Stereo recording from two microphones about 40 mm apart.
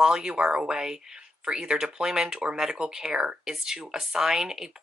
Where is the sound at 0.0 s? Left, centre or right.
Centre.